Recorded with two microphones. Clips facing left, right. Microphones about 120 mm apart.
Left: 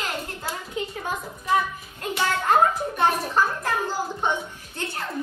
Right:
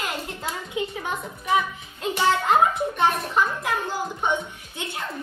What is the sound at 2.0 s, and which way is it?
Speech, 25° right (ahead or behind).